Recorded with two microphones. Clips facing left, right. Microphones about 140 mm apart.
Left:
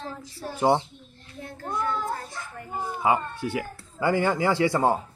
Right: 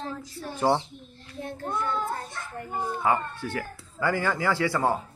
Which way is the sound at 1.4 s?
25° right (ahead or behind).